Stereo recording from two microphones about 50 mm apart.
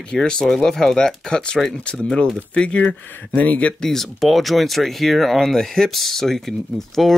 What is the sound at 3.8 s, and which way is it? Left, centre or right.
Speech, centre.